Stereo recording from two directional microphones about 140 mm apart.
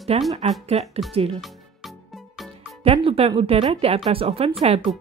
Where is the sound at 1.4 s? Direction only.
Centre (ahead or behind).